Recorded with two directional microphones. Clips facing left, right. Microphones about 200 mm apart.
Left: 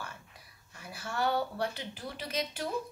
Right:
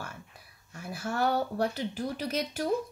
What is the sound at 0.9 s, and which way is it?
A woman's voice, 45° right (ahead or behind).